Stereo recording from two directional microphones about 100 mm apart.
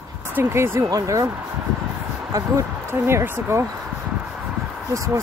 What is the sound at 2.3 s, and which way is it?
Speech, 30° right (ahead or behind).